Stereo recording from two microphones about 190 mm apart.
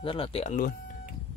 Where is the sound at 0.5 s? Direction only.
45° left (ahead or behind).